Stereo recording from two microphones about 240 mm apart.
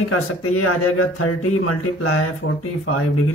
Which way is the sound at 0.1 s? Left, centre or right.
Left.